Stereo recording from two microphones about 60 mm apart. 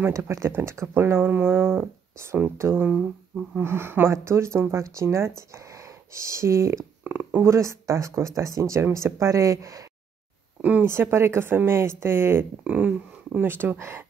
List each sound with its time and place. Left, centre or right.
0.1 s speech: right
0.5 s speech: right
2.5 s speech: right
10.6 s speech: right
10.9 s speech: right
12.6 s speech: centre
13.4 s speech: right